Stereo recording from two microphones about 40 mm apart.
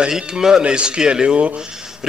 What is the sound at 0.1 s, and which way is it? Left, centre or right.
A man's voice, centre.